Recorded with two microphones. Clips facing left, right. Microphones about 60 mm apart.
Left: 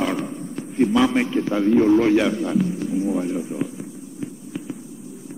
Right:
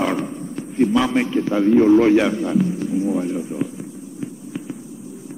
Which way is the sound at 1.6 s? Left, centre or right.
Centre.